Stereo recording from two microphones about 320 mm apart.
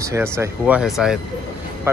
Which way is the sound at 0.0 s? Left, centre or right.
Centre.